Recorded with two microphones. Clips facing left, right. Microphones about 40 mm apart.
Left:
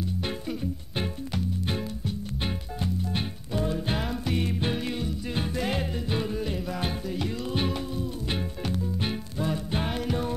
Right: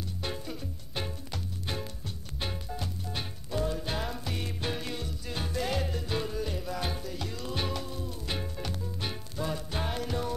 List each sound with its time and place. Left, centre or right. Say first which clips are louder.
0.5 s music: left 8 dB; left